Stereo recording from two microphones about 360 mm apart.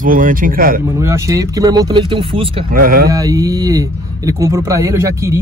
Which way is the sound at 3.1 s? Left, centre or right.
Centre.